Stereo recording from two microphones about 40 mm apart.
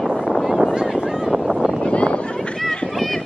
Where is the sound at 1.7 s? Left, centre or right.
Left.